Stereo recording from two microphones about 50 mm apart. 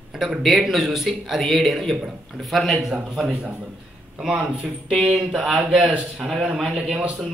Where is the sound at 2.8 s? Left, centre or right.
Centre.